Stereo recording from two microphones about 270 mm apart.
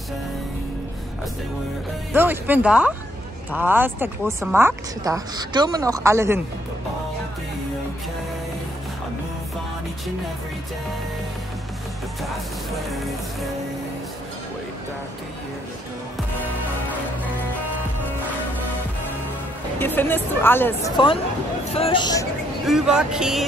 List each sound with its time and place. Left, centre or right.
2.1 s speech: centre
12.2 s music: centre
19.8 s speech: centre
22.7 s music: centre